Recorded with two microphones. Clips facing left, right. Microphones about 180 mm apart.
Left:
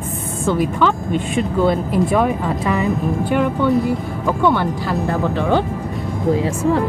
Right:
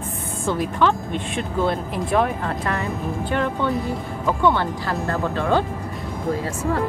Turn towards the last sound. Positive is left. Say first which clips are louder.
# left 3 dB
turn(degrees=15)  # may be behind; listen again after turning